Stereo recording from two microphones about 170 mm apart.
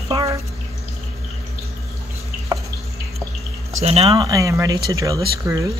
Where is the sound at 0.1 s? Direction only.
20° right (ahead or behind).